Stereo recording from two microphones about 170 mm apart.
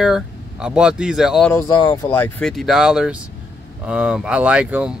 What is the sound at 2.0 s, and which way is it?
Speech, 10° left (ahead or behind).